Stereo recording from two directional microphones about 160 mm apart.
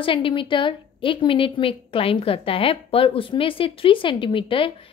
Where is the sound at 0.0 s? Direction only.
35° left (ahead or behind).